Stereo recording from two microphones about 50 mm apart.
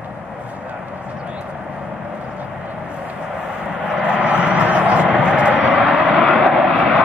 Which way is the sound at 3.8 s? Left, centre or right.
Centre.